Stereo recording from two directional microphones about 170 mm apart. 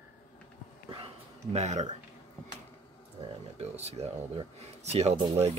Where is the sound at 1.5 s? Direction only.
45° right (ahead or behind).